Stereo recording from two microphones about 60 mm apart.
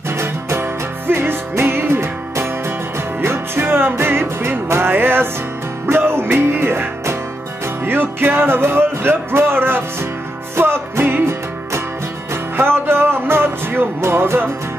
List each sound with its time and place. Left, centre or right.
0.1 s music: right